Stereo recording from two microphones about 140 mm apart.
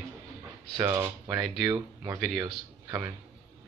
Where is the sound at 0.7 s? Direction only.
25° right (ahead or behind).